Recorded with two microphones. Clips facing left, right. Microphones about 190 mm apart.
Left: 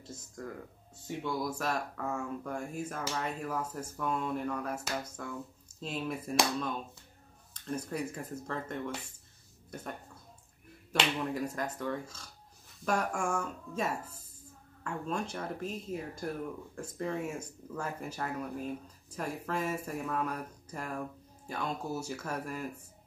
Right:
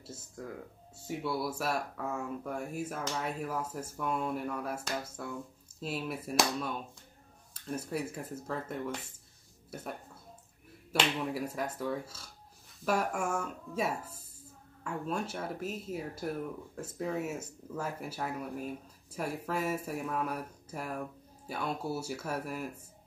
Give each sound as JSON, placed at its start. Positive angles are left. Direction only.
{"t": 0.0, "sound": "speech", "side_deg": -5}